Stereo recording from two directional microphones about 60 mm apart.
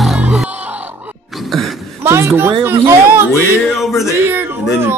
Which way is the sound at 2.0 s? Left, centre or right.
Right.